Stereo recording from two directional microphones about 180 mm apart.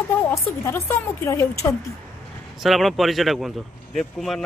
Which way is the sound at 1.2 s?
15° left (ahead or behind).